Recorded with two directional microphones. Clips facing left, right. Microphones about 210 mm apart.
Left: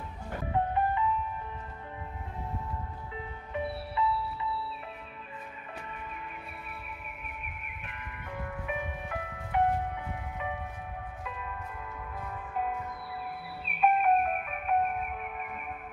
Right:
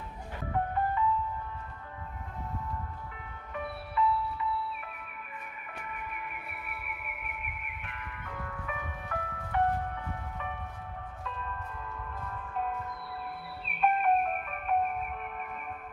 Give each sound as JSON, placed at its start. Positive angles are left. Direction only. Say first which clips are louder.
{"t": 0.5, "sound": "music", "louder": "left 2 dB", "side_deg": 20}
{"t": 3.5, "sound": "music", "louder": "left 1 dB", "side_deg": 30}
{"t": 5.8, "sound": "music", "louder": "right 2 dB", "side_deg": 25}